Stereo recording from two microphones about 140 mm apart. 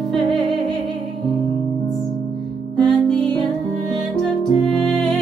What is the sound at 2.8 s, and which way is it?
Music, 5° left (ahead or behind).